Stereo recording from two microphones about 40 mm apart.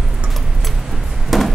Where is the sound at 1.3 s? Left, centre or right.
Centre.